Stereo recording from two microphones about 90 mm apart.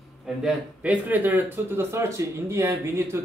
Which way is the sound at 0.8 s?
15° right (ahead or behind).